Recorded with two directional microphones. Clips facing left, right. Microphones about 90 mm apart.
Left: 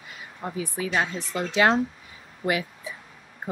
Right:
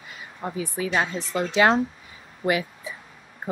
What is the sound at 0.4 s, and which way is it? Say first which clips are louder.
Speech: right 2 dB; 30° right (ahead or behind).